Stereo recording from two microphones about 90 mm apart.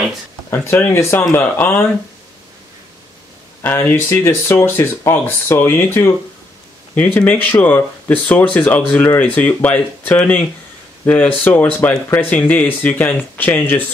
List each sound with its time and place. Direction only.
0.5 s speech: 25° left (ahead or behind)
3.6 s speech: 25° left (ahead or behind)